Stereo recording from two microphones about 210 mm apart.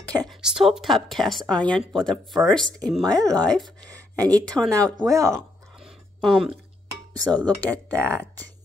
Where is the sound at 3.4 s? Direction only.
Centre (ahead or behind).